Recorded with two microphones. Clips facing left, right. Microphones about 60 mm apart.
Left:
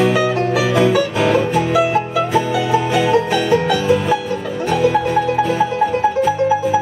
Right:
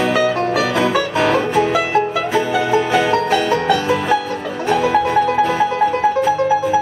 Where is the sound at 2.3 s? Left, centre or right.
Right.